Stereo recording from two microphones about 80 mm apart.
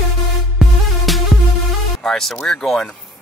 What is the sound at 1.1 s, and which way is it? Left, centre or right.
Music, centre.